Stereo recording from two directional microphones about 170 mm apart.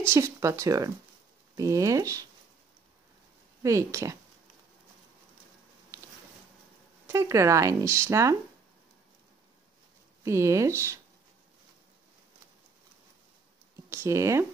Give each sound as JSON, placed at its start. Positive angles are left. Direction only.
{"t": 0.0, "sound": "speech", "side_deg": -15}
{"t": 3.6, "sound": "speech", "side_deg": -20}
{"t": 7.1, "sound": "speech", "side_deg": -15}
{"t": 10.2, "sound": "speech", "side_deg": -15}
{"t": 13.8, "sound": "speech", "side_deg": -15}